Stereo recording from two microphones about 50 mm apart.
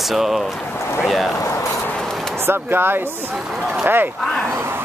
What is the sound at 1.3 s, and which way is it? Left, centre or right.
Speech, left.